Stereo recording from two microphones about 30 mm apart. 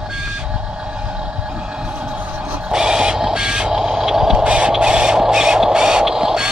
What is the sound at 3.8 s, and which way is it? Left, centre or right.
Radio, centre.